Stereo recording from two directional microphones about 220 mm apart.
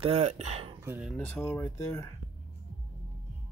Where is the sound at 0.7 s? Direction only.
10° right (ahead or behind).